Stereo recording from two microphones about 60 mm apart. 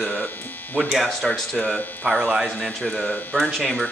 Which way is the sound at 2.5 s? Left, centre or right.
Centre.